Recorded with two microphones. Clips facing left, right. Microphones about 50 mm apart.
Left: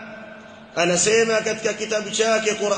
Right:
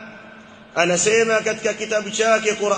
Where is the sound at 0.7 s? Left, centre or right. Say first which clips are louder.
Right 1 dB; right.